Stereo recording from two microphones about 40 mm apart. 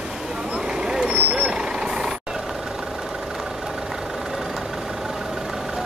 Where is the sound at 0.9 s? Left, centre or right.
Right.